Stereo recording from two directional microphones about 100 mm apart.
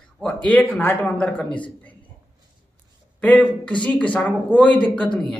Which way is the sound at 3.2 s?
15° left (ahead or behind).